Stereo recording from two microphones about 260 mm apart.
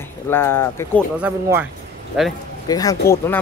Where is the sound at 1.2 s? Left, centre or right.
Centre.